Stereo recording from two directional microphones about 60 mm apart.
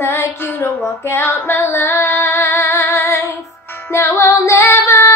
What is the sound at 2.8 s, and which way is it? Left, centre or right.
Female singing, left.